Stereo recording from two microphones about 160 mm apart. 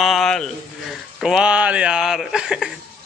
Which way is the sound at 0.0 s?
Centre (ahead or behind).